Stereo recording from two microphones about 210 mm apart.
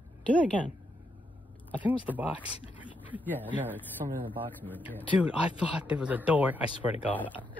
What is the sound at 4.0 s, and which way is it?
Speech, 35° right (ahead or behind).